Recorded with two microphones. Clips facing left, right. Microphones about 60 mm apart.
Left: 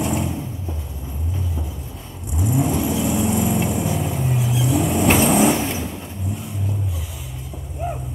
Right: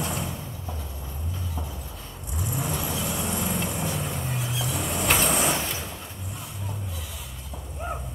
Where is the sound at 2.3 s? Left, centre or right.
Left.